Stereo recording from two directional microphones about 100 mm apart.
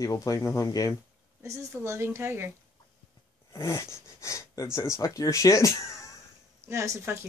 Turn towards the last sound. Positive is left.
turn(degrees=-30)  # may be behind; listen again after turning